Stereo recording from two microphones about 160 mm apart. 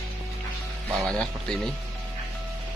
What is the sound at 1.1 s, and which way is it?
Speech, 5° left (ahead or behind).